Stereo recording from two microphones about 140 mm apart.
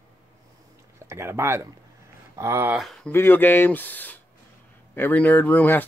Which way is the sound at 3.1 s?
15° left (ahead or behind).